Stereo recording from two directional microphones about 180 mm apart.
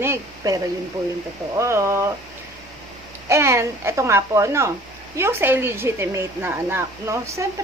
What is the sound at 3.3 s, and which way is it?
A woman's voice, 15° right (ahead or behind).